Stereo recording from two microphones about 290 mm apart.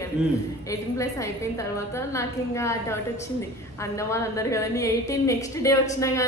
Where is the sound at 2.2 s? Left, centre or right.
Centre.